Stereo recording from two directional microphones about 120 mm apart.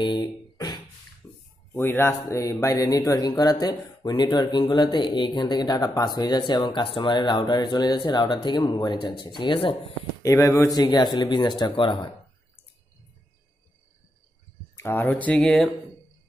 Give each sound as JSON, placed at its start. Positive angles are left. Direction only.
{"t": 0.0, "sound": "beatboxing", "side_deg": 40}
{"t": 1.8, "sound": "speech", "side_deg": 20}
{"t": 10.2, "sound": "speech", "side_deg": 25}
{"t": 14.8, "sound": "speech", "side_deg": 15}